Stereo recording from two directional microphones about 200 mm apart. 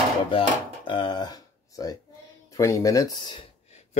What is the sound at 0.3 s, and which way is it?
Speech, 25° left (ahead or behind).